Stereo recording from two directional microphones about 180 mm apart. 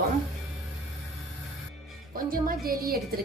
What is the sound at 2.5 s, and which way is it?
Speech, 55° right (ahead or behind).